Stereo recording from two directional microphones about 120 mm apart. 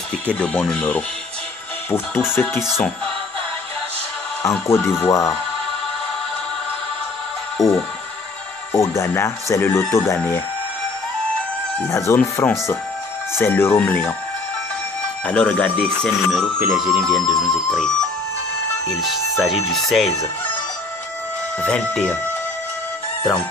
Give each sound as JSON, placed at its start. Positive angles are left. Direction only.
{"t": 0.3, "sound": "speech", "side_deg": 10}
{"t": 2.4, "sound": "speech", "side_deg": 15}
{"t": 4.6, "sound": "speech", "side_deg": 20}
{"t": 7.5, "sound": "music", "side_deg": 0}
{"t": 8.7, "sound": "speech", "side_deg": 25}
{"t": 11.9, "sound": "speech", "side_deg": 20}
{"t": 12.2, "sound": "speech", "side_deg": 10}
{"t": 13.4, "sound": "speech", "side_deg": 20}
{"t": 15.2, "sound": "speech", "side_deg": 10}
{"t": 19.0, "sound": "speech", "side_deg": 0}
{"t": 21.5, "sound": "speech", "side_deg": 10}